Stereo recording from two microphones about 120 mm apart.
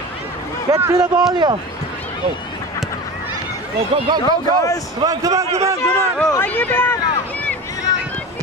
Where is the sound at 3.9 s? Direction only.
40° right (ahead or behind).